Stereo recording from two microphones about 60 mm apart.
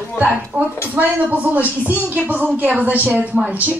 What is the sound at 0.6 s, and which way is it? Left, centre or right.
Speech, right.